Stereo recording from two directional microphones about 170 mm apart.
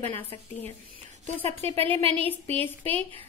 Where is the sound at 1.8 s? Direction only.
35° right (ahead or behind).